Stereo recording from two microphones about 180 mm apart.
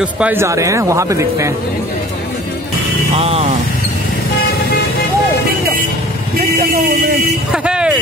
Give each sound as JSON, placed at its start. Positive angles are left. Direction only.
{"t": 0.0, "sound": "speech", "side_deg": -10}
{"t": 3.2, "sound": "speech", "side_deg": -35}
{"t": 7.5, "sound": "vehicle", "side_deg": -5}